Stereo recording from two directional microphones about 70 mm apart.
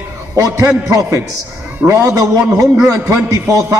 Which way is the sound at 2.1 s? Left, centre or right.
Right.